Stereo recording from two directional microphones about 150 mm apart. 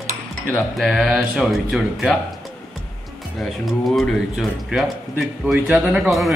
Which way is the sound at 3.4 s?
Centre (ahead or behind).